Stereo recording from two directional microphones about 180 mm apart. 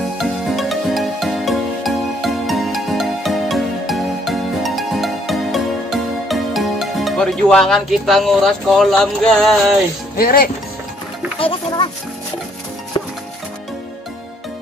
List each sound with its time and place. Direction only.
0.2 s music: centre (ahead or behind)
10.1 s speech: 55° left (ahead or behind)
11.3 s speech: 30° left (ahead or behind)